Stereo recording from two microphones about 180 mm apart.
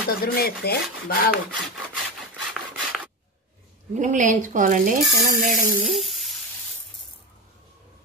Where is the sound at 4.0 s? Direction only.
45° right (ahead or behind).